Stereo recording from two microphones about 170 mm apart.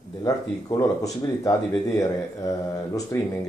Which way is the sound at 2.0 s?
20° left (ahead or behind).